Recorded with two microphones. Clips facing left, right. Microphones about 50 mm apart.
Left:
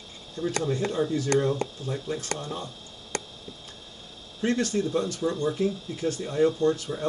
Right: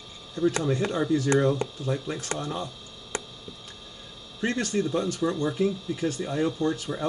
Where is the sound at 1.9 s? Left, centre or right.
Right.